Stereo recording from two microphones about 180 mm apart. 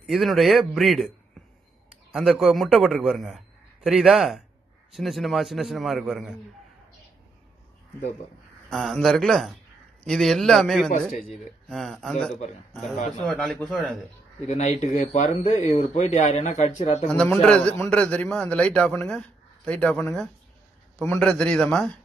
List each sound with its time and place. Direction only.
0.0 s a man's voice: centre (ahead or behind)
2.1 s a man's voice: centre (ahead or behind)
8.6 s a man's voice: centre (ahead or behind)
14.5 s speech: 40° left (ahead or behind)
17.1 s a man's voice: 10° left (ahead or behind)